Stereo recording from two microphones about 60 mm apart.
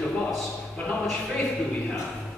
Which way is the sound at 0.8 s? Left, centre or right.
Left.